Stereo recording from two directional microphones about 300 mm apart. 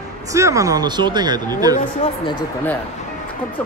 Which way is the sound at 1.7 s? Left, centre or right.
Centre.